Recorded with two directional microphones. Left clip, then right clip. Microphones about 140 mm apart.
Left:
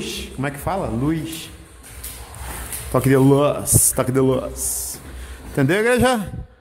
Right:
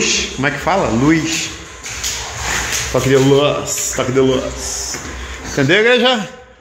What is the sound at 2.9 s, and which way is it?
Speech, 45° left (ahead or behind).